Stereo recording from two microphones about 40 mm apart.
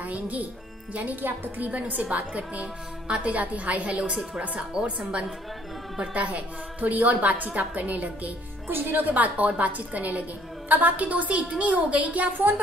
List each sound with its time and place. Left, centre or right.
0.0 s a woman's voice: right
6.1 s a woman's voice: right
8.6 s a woman's voice: right
12.3 s speech: right